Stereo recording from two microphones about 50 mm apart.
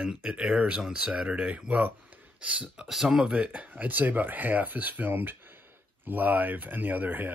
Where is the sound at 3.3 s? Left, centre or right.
Right.